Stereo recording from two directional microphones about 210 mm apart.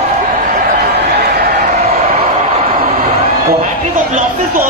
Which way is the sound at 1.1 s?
50° right (ahead or behind).